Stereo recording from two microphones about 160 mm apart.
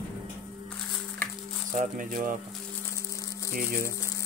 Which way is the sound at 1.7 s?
55° right (ahead or behind).